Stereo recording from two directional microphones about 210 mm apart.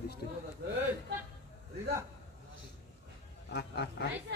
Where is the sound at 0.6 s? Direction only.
50° right (ahead or behind).